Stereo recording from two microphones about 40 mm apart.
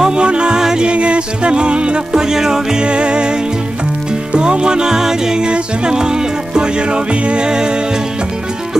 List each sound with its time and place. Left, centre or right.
0.0 s music: right
2.2 s music: centre
4.4 s music: right